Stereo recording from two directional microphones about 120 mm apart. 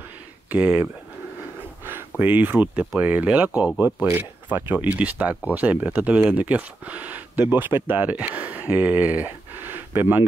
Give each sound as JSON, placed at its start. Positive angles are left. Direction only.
{"t": 0.5, "sound": "speech", "side_deg": -15}
{"t": 1.9, "sound": "speech", "side_deg": -15}